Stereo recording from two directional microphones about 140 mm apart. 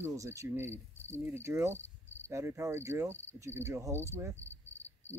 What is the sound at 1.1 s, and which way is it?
Cricket, 15° right (ahead or behind).